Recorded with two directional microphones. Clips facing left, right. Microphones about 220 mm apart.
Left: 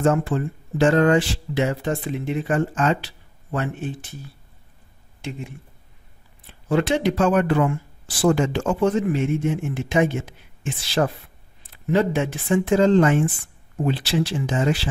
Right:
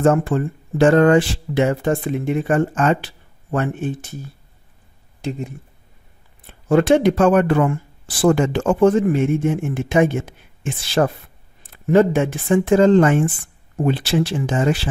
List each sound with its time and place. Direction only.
0.0 s speech: 50° right (ahead or behind)
6.4 s speech: 50° right (ahead or behind)